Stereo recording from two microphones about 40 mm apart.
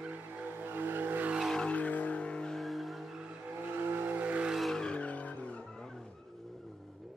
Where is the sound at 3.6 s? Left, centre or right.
Right.